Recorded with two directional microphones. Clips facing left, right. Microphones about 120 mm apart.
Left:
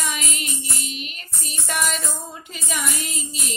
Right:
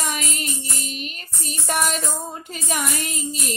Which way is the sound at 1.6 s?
45° right (ahead or behind).